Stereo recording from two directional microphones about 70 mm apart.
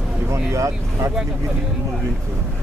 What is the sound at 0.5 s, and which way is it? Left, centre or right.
Speech, right.